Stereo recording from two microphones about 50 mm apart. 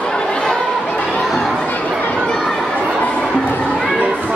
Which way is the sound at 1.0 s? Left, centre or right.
Left.